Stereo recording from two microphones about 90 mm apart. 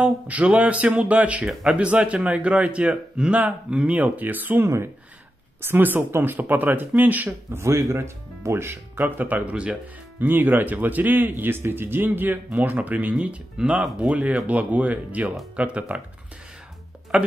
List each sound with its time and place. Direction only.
0.0 s a man's voice: 15° right (ahead or behind)
1.4 s a man's voice: 5° right (ahead or behind); by 7.2 s 20° right (ahead or behind)
7.5 s a man's voice: 30° right (ahead or behind); by 16.0 s 15° right (ahead or behind)
17.1 s a man's voice: 15° right (ahead or behind)